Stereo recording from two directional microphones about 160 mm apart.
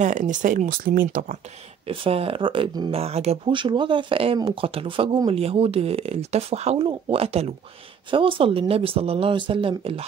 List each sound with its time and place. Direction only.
0.0 s speech: 50° right (ahead or behind)
1.9 s speech: 35° right (ahead or behind)